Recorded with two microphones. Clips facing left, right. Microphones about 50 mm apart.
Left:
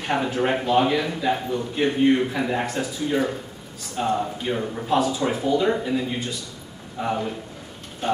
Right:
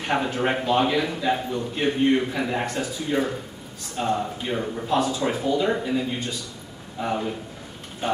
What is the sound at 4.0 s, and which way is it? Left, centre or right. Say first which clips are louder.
A man's voice: left 1 dB; centre.